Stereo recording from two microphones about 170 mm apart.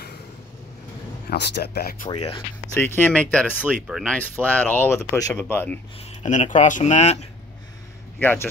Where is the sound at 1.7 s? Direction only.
60° left (ahead or behind).